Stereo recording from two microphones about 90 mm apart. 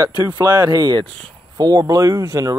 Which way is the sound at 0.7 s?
50° right (ahead or behind).